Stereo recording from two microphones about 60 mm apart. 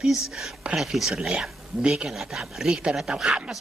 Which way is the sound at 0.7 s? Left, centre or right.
Centre.